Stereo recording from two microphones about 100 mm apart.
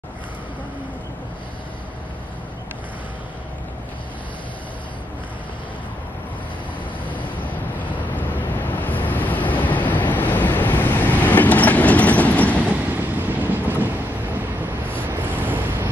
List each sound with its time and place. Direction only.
8.2 s vehicle: 20° left (ahead or behind)
10.1 s train: 15° left (ahead or behind)
12.9 s train: 20° right (ahead or behind)
15.0 s waves: 20° right (ahead or behind)